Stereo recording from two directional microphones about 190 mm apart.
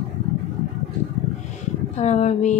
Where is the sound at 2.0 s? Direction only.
35° left (ahead or behind).